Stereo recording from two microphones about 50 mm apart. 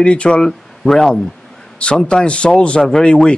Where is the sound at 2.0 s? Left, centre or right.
Left.